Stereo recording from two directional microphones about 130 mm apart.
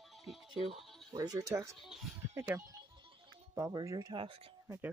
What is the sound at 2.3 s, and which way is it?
Speech, 20° right (ahead or behind).